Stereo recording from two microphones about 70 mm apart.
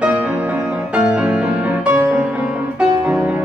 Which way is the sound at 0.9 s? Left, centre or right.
Centre.